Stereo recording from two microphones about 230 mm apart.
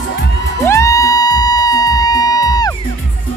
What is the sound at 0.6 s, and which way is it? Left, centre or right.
Music, centre.